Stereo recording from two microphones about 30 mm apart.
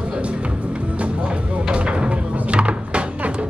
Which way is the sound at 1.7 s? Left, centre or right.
Right.